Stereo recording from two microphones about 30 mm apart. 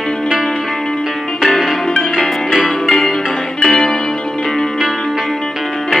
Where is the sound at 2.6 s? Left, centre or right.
Left.